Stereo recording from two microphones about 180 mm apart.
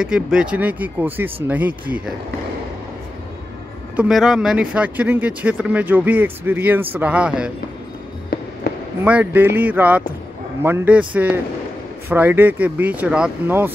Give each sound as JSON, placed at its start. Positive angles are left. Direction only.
{"t": 0.0, "sound": "speech", "side_deg": -5}
{"t": 3.9, "sound": "speech", "side_deg": -5}
{"t": 8.6, "sound": "basketball bounce", "side_deg": 60}
{"t": 9.0, "sound": "speech", "side_deg": -10}